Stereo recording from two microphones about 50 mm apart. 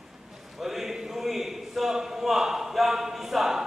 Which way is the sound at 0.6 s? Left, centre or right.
Centre.